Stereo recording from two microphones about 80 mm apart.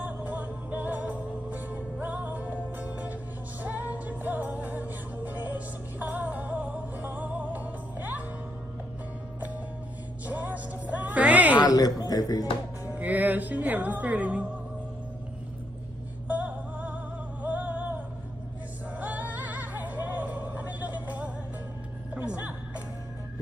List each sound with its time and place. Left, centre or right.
0.0 s music: centre
10.2 s music: centre
11.6 s speech: left
12.9 s speech: centre
16.3 s female singing: centre
17.4 s music: centre